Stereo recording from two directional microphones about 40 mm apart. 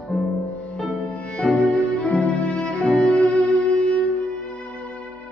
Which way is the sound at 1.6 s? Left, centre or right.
Left.